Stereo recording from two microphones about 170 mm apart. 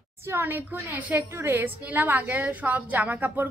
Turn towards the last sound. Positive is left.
turn(degrees=-10)  # may be behind; listen again after turning